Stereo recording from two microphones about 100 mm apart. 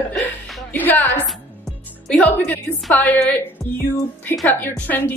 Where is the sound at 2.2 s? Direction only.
15° left (ahead or behind).